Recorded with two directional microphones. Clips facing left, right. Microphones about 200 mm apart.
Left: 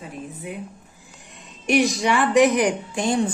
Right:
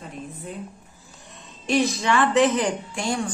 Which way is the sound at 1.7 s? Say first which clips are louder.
Left 2 dB; 15° left (ahead or behind).